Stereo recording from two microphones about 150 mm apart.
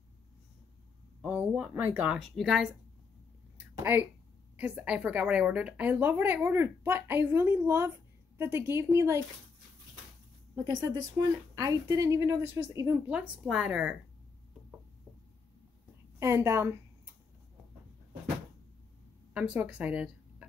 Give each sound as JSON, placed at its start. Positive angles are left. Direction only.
{"t": 1.2, "sound": "a sound", "side_deg": -10}
{"t": 1.7, "sound": "a woman's voice", "side_deg": -15}
{"t": 2.1, "sound": "speech", "side_deg": 0}
{"t": 3.5, "sound": "a sound", "side_deg": -10}
{"t": 4.6, "sound": "a woman's voice", "side_deg": -10}
{"t": 10.5, "sound": "a woman's voice", "side_deg": -25}
{"t": 16.2, "sound": "speech", "side_deg": -20}
{"t": 19.3, "sound": "speech", "side_deg": -10}